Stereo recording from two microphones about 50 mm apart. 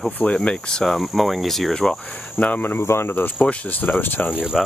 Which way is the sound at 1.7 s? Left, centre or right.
Centre.